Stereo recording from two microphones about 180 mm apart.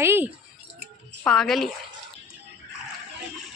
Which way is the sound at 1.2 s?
5° left (ahead or behind).